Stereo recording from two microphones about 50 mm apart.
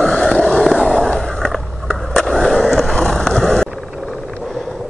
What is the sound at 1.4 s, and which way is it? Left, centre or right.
Skateboard, centre.